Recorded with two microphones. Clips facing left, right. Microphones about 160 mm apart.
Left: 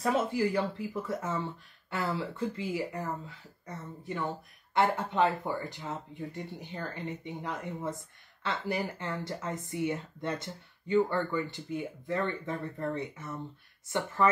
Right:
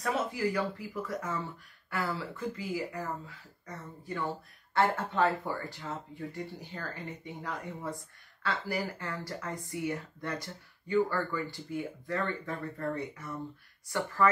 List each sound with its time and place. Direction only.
0.0 s speech: 25° left (ahead or behind)